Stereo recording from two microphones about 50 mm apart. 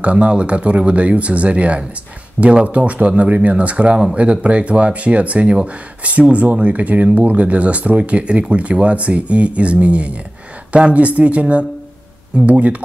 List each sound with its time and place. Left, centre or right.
0.0 s speech: right